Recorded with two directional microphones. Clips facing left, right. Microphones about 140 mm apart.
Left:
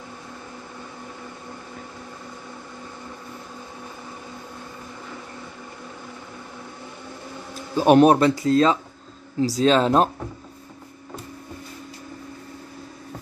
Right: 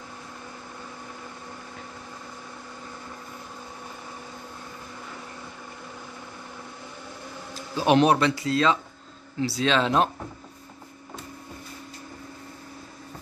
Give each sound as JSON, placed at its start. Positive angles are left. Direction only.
{"t": 7.7, "sound": "a man's voice", "side_deg": 45}